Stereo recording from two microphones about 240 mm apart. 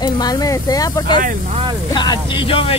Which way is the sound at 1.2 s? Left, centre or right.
Right.